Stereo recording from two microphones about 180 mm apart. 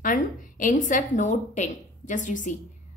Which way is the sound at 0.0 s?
45° left (ahead or behind).